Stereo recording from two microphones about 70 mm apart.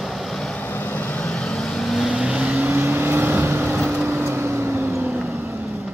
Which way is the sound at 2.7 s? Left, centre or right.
Right.